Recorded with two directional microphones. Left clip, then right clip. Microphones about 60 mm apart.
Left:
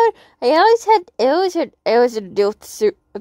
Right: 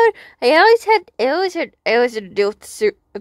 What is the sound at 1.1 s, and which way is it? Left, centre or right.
Speech, left.